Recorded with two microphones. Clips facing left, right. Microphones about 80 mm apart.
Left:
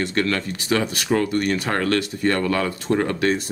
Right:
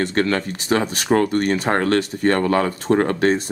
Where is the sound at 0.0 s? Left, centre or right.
Right.